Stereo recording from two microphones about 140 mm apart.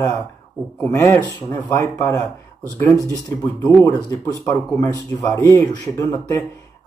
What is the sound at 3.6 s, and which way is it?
Speech, 10° left (ahead or behind).